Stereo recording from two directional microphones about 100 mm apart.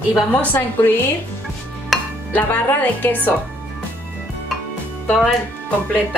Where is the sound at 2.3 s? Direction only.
15° left (ahead or behind).